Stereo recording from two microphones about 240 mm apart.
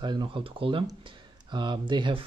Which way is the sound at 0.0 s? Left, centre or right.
Centre.